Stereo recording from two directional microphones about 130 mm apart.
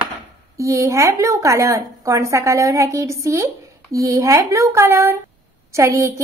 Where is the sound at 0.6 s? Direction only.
25° right (ahead or behind).